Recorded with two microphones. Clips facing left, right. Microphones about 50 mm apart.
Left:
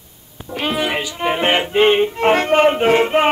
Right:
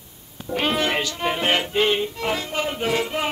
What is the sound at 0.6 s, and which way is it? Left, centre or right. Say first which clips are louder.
Music: left 2 dB; centre.